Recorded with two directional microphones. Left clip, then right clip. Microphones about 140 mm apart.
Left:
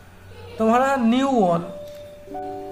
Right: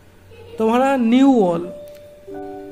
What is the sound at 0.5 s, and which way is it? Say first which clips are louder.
Speech: right 2 dB; 35° right (ahead or behind).